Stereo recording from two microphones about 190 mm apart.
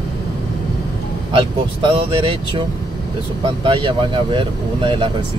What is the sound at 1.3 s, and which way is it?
Speech, 25° right (ahead or behind).